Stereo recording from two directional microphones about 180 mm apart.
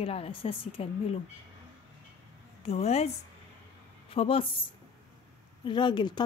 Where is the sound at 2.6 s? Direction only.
35° left (ahead or behind).